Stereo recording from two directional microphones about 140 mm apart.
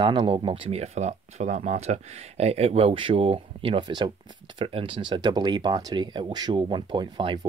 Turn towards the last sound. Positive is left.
turn(degrees=-30)  # may be behind; listen again after turning